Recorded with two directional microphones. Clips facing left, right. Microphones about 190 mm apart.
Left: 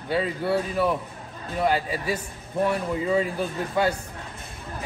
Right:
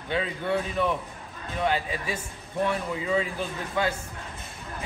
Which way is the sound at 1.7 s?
35° left (ahead or behind).